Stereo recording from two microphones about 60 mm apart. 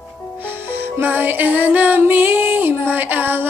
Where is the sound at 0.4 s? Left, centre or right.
Right.